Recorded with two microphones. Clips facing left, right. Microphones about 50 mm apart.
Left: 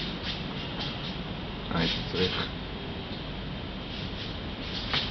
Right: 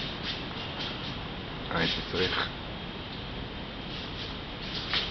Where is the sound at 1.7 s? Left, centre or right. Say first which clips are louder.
Even; centre.